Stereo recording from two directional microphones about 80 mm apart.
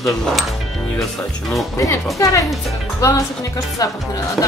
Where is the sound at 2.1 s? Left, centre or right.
Left.